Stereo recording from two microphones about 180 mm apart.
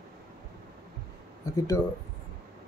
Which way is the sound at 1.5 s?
20° left (ahead or behind).